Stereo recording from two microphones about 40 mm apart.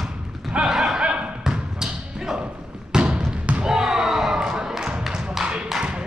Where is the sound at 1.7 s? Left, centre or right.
Centre.